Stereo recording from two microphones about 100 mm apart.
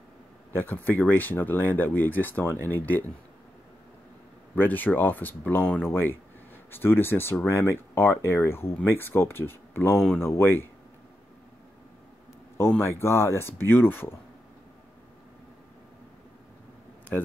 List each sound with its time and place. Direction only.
0.6 s speech: 20° left (ahead or behind)
4.6 s speech: 15° left (ahead or behind)
12.5 s a man's voice: 25° left (ahead or behind)